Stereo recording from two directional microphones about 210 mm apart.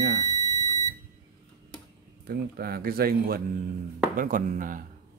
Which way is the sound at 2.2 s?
45° right (ahead or behind).